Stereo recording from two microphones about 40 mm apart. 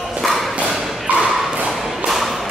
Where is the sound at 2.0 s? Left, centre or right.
Centre.